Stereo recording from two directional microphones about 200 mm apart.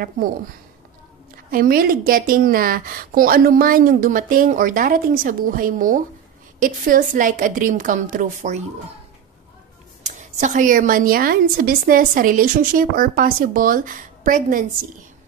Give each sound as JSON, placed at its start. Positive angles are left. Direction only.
{"t": 1.5, "sound": "a woman's voice", "side_deg": -45}
{"t": 10.0, "sound": "a woman's voice", "side_deg": -35}